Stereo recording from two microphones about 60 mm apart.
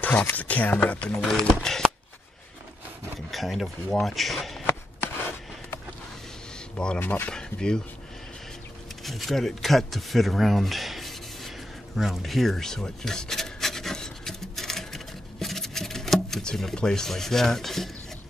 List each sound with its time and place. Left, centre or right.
0.0 s speech: left
1.1 s speech: centre
3.3 s speech: centre
7.0 s speech: left
7.2 s speech: centre
9.0 s speech: centre
12.0 s rub: centre